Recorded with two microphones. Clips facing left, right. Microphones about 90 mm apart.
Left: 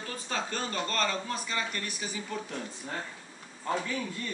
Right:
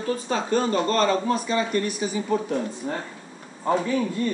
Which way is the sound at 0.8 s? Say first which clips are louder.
Right 10 dB; 30° right (ahead or behind).